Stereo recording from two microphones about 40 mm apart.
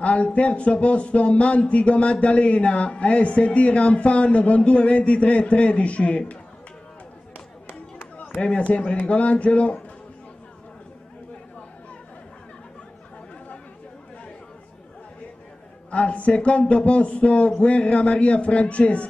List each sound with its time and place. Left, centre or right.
0.0 s speech: left
8.4 s speech: left
15.9 s speech: left